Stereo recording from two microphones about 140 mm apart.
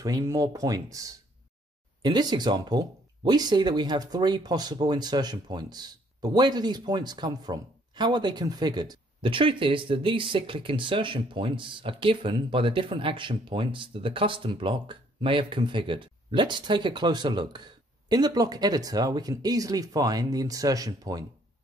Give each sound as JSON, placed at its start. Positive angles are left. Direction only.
{"t": 0.0, "sound": "speech", "side_deg": -25}